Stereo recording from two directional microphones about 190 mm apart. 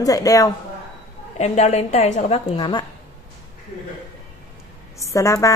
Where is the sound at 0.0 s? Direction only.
15° left (ahead or behind).